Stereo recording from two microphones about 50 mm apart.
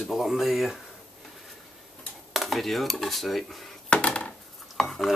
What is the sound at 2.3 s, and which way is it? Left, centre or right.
Dishes, centre.